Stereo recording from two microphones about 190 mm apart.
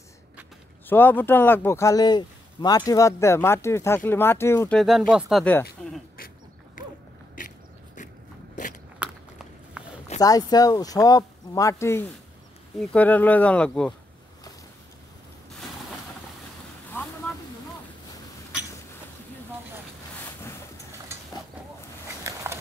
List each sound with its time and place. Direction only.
0.8 s speech: 10° left (ahead or behind)
4.7 s speech: centre (ahead or behind)
6.1 s duck: 50° left (ahead or behind)
7.3 s a sound: 45° left (ahead or behind)
9.0 s biting: 5° right (ahead or behind)
10.2 s speech: 20° left (ahead or behind)
22.2 s walk: 15° right (ahead or behind)